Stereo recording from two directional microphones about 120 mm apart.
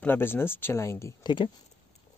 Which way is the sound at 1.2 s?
40° left (ahead or behind).